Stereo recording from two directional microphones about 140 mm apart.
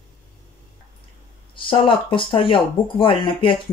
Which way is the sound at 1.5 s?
40° left (ahead or behind).